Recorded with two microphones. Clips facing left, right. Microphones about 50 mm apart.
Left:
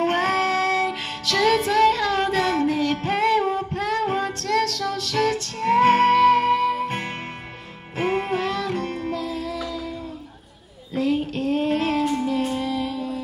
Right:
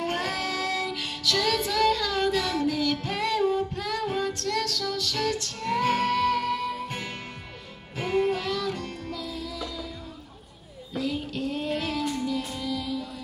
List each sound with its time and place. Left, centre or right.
0.0 s music: left
1.4 s child singing: left
4.6 s music: left
11.0 s child singing: left
12.1 s music: left
12.4 s music: left